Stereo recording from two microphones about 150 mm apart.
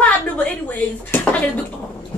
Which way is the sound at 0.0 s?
10° left (ahead or behind).